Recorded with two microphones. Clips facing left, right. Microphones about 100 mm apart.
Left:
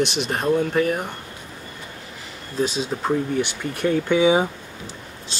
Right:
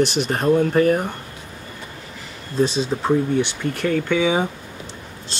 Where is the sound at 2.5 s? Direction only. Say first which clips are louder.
Right 4 dB; 5° left (ahead or behind).